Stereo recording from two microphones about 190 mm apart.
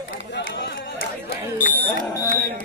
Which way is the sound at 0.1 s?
80° left.